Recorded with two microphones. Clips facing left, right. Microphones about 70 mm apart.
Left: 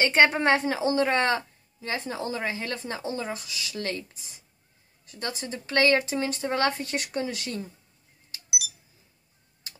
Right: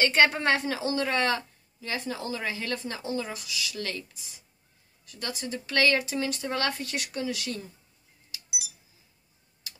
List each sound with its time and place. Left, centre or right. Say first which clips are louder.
0.0 s a woman's voice: left 2 dB; left